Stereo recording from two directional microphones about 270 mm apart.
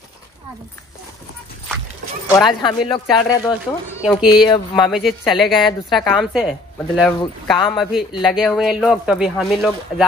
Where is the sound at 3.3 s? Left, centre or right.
Centre.